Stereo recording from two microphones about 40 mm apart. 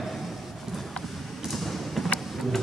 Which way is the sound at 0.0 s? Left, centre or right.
Centre.